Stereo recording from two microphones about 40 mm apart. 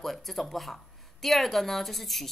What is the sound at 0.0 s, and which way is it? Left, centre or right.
A woman's voice, centre.